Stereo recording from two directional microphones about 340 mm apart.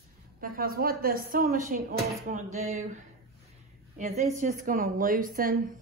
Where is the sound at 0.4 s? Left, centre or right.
Right.